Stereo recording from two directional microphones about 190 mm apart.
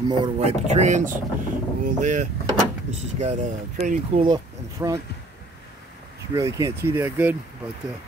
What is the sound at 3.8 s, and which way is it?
Speech, 30° right (ahead or behind).